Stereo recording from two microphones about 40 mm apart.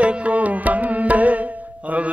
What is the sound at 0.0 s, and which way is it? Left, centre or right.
Music, right.